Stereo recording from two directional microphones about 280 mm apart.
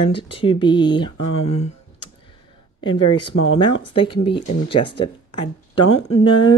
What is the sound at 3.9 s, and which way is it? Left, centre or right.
Speech, centre.